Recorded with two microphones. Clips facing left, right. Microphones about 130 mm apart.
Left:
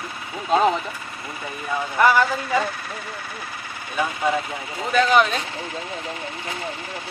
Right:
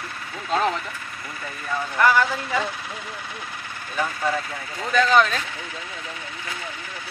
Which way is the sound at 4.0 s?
15° left (ahead or behind).